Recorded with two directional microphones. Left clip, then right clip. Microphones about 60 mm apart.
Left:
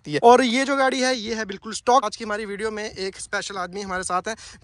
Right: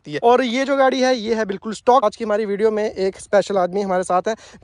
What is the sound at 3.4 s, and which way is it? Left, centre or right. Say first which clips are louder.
Speech: right 13 dB; centre.